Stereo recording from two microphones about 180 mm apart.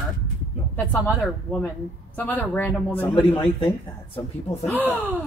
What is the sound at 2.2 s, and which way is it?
A woman's voice, 10° left (ahead or behind).